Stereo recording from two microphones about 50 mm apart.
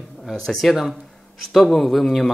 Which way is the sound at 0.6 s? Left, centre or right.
Centre.